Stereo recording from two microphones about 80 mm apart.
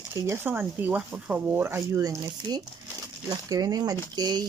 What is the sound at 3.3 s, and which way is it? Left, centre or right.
Speech, right.